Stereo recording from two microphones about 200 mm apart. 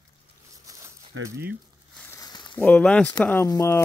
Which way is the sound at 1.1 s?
70° right (ahead or behind).